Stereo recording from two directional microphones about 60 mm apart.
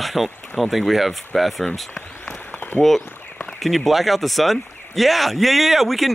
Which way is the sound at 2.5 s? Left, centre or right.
Left.